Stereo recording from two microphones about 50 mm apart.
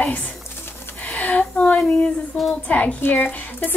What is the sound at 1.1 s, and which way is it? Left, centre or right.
A woman's voice, left.